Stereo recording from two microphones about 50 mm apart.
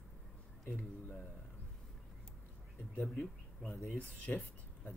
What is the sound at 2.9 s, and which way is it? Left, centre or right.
Speech, left.